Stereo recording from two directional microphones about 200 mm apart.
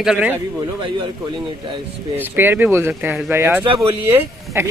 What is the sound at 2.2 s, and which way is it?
Speech, 10° right (ahead or behind).